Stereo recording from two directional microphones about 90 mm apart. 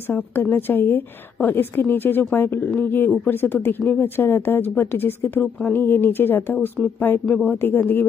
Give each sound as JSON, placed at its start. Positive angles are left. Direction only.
{"t": 0.0, "sound": "speech", "side_deg": 25}